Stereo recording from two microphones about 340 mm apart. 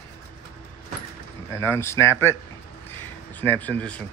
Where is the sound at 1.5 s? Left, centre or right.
Centre.